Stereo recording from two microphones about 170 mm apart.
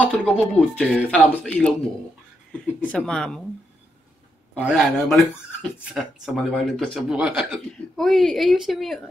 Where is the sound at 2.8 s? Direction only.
5° left (ahead or behind).